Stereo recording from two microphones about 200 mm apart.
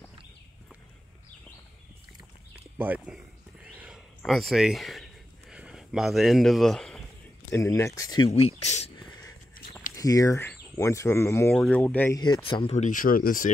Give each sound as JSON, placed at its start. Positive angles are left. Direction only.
{"t": 2.8, "sound": "speech", "side_deg": -10}
{"t": 3.6, "sound": "a sound", "side_deg": -5}
{"t": 4.2, "sound": "speech", "side_deg": 0}
{"t": 7.5, "sound": "speech", "side_deg": 15}
{"t": 8.3, "sound": "speech", "side_deg": 35}
{"t": 9.9, "sound": "speech", "side_deg": 15}
{"t": 12.4, "sound": "speech", "side_deg": 25}